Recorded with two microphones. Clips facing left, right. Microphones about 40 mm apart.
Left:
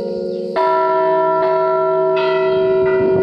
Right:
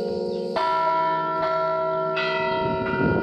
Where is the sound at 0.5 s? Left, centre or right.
Centre.